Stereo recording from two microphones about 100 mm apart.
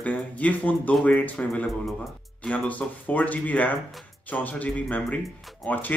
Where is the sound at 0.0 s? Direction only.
15° left (ahead or behind).